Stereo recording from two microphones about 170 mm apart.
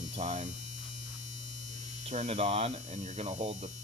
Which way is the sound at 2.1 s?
40° right (ahead or behind).